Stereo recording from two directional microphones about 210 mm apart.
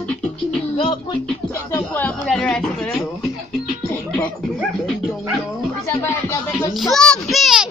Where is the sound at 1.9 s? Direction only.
5° left (ahead or behind).